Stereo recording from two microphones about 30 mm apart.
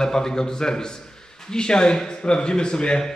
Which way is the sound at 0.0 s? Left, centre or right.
Centre.